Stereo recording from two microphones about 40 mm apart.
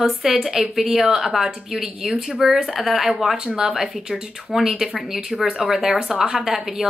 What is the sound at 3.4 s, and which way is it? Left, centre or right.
Speech, centre.